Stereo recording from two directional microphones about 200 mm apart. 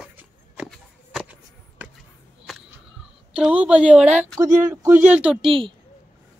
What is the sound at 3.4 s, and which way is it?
A woman's voice, 5° right (ahead or behind).